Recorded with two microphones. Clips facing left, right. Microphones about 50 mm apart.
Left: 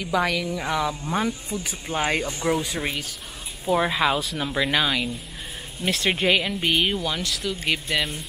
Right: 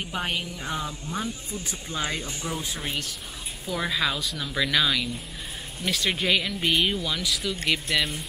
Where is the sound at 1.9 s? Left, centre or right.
Left.